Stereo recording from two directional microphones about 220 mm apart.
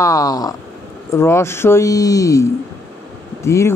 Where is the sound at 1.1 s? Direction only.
10° left (ahead or behind).